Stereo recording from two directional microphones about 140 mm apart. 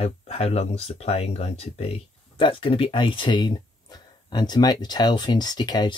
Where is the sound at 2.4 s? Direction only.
40° left (ahead or behind).